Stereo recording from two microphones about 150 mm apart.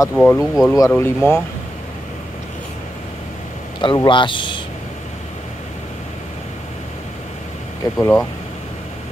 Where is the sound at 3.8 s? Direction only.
30° left (ahead or behind).